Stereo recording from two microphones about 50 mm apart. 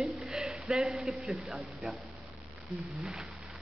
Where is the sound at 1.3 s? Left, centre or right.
Centre.